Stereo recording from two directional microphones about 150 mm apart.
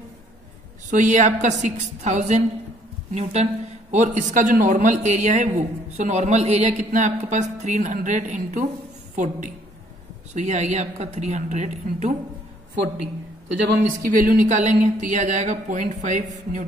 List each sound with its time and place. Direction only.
0.8 s a man's voice: 55° right (ahead or behind)
13.7 s speech: 65° right (ahead or behind)